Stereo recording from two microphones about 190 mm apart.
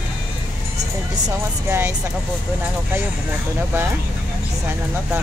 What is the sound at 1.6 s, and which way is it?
Speech, 10° right (ahead or behind).